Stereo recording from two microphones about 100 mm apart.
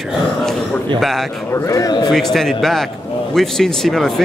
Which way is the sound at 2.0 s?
5° left (ahead or behind).